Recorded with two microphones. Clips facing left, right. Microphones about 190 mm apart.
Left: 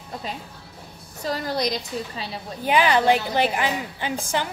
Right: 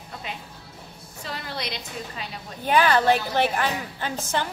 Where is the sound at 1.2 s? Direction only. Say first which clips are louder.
Left 8 dB; 40° left (ahead or behind).